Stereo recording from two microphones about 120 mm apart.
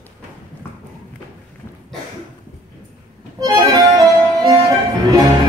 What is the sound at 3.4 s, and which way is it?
Accordion, 30° right (ahead or behind).